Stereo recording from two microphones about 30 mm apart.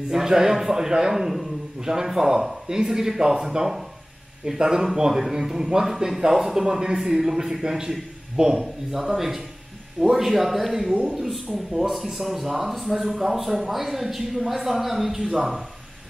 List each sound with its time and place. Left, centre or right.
0.1 s speech: centre
8.4 s speech: right
8.9 s speech: centre